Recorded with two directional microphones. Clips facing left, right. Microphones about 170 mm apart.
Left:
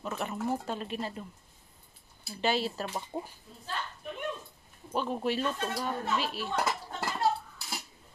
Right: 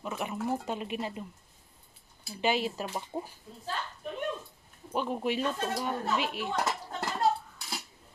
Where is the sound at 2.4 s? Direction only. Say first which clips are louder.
Right 1 dB; 15° right (ahead or behind).